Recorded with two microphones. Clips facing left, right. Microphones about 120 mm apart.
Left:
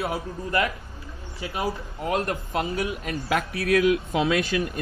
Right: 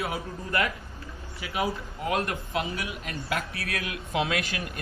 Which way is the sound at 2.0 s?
30° left (ahead or behind).